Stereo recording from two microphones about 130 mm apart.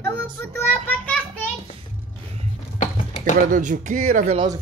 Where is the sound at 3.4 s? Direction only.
80° right.